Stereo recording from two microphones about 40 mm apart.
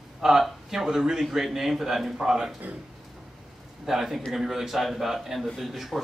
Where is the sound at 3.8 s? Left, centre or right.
Centre.